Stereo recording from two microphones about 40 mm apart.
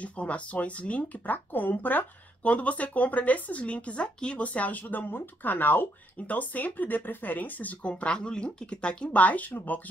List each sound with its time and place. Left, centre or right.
0.0 s speech: left
2.4 s speech: left
4.5 s speech: left
9.2 s speech: left